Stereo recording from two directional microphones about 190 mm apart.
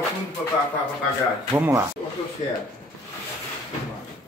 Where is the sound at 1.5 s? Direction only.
15° right (ahead or behind).